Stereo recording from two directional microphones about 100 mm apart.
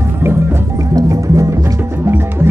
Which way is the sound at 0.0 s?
25° right (ahead or behind).